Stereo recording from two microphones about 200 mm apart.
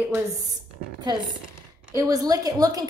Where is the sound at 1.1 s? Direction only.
20° right (ahead or behind).